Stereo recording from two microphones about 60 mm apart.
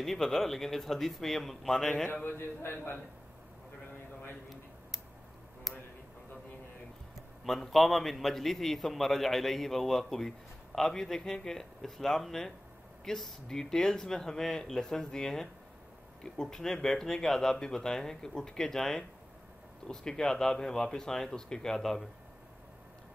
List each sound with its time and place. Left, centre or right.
0.0 s a man's voice: centre
2.2 s a man's voice: left
7.4 s a man's voice: centre